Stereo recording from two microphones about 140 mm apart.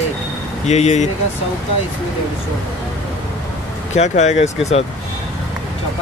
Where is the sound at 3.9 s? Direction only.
55° left (ahead or behind).